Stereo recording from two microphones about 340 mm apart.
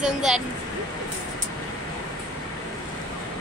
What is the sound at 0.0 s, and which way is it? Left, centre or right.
Speech, centre.